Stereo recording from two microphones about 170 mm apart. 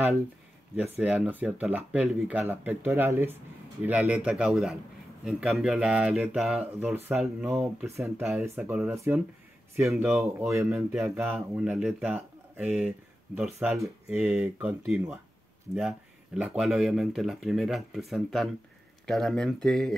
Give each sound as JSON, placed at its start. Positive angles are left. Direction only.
{"t": 0.8, "sound": "speech", "side_deg": -10}
{"t": 8.4, "sound": "speech", "side_deg": -5}
{"t": 11.0, "sound": "speech", "side_deg": 0}
{"t": 14.0, "sound": "speech", "side_deg": -10}
{"t": 16.3, "sound": "speech", "side_deg": -5}